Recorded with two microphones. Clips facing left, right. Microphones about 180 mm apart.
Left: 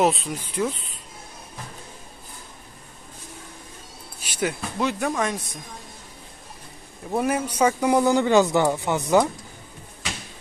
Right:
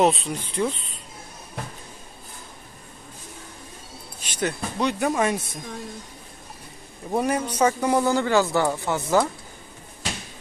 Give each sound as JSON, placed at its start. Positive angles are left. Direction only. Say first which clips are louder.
{"t": 0.0, "sound": "speech", "louder": "right 1 dB", "side_deg": 0}
{"t": 4.2, "sound": "speech", "louder": "even", "side_deg": 10}
{"t": 7.2, "sound": "speech", "louder": "even", "side_deg": 5}